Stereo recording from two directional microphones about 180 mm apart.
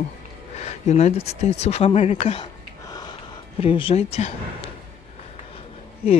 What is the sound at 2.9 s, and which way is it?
Gasp, 20° left (ahead or behind).